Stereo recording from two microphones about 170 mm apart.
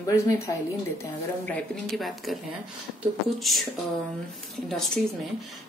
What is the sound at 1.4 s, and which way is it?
Speech, 5° left (ahead or behind).